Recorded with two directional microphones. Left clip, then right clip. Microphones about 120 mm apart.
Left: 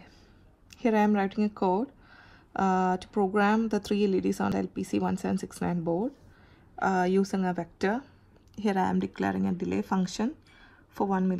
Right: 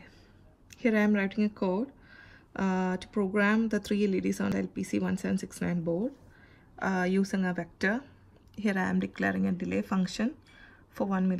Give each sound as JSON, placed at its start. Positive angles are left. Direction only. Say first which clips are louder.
{"t": 0.7, "sound": "speech", "louder": "left 2 dB", "side_deg": 20}